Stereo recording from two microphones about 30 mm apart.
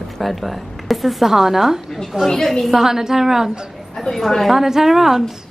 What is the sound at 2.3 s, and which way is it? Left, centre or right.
Speech, centre.